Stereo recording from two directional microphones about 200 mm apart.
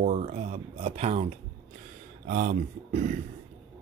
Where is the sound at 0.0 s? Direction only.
30° right (ahead or behind).